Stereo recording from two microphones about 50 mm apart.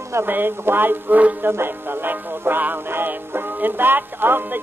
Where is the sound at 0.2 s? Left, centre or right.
Right.